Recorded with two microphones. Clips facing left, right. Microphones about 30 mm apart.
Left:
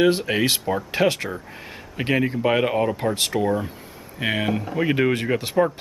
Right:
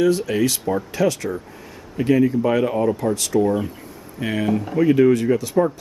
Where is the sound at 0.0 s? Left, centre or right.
Left.